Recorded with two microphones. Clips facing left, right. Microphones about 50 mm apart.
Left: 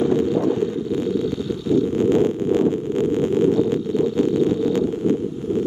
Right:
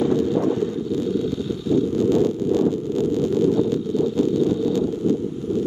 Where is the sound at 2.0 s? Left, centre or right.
Left.